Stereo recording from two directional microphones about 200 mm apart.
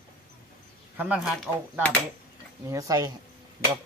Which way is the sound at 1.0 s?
5° right (ahead or behind).